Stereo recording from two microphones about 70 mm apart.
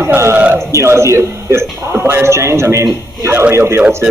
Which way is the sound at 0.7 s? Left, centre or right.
Right.